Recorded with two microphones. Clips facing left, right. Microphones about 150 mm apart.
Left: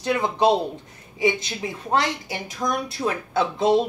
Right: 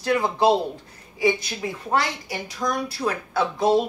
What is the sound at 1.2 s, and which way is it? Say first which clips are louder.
A woman's voice: right 1 dB; 20° left (ahead or behind).